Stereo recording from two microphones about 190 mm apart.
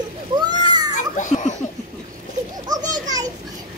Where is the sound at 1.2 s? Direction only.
40° left (ahead or behind).